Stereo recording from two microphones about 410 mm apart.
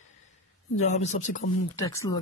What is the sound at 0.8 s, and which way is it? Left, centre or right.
Speech, centre.